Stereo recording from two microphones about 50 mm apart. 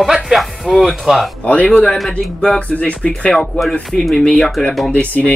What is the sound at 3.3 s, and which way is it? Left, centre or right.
Speech, centre.